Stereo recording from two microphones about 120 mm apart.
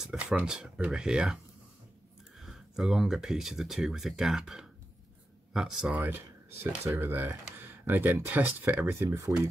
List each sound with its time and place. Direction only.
0.0 s speech: 5° right (ahead or behind)
2.4 s speech: 5° right (ahead or behind)
6.0 s speech: 20° right (ahead or behind)